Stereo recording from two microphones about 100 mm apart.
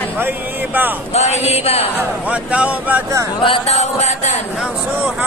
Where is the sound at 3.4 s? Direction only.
90° left.